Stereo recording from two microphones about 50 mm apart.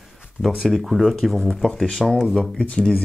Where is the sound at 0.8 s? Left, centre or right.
Centre.